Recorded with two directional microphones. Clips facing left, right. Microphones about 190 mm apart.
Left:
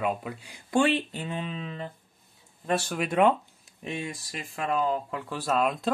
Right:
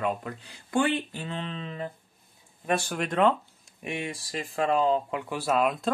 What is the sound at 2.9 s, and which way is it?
Speech, 5° left (ahead or behind).